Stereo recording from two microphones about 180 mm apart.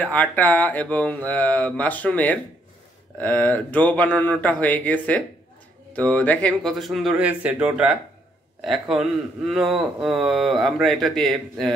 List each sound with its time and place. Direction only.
0.0 s speech: 10° left (ahead or behind)